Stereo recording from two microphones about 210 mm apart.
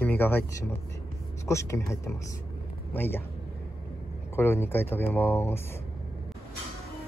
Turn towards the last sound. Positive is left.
turn(degrees=10)  # may be behind; listen again after turning